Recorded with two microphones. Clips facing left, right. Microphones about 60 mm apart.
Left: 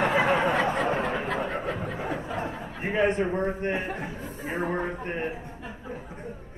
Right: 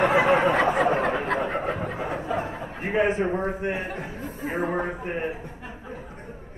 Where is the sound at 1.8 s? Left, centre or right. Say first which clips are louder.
Right 2 dB; right.